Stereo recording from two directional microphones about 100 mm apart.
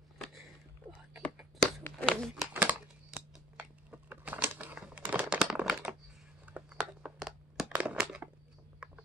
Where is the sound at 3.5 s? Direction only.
15° right (ahead or behind).